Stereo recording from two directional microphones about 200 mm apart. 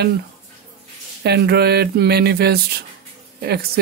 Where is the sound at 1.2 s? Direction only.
55° right (ahead or behind).